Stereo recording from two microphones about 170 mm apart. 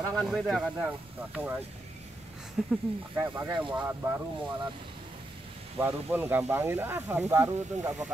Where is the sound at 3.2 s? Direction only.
15° right (ahead or behind).